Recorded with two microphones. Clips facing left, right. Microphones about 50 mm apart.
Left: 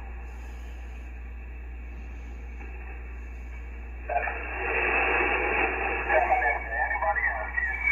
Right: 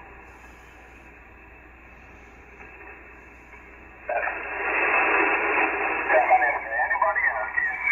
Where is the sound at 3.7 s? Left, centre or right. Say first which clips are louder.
Right 2 dB; right.